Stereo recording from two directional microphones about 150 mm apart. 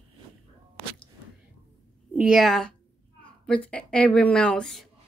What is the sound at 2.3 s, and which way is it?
A woman's voice, centre (ahead or behind).